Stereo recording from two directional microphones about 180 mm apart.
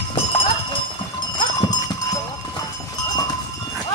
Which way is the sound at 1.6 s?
20° left (ahead or behind).